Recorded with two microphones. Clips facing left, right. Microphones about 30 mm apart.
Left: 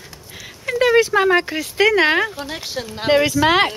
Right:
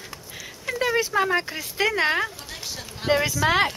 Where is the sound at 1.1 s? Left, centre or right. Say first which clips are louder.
Left 7 dB; left.